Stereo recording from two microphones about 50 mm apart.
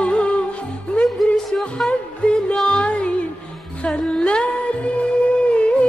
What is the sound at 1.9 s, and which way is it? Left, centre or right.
Music, centre.